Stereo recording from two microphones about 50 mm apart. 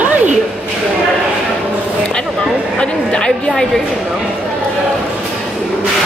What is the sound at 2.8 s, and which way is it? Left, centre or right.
Speech, centre.